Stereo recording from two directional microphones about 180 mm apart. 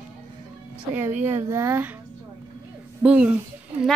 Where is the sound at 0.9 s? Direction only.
10° right (ahead or behind).